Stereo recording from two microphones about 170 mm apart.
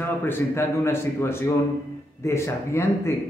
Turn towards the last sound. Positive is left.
turn(degrees=15)  # may be behind; listen again after turning